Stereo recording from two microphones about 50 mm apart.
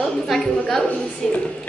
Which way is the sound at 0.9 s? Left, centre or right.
Left.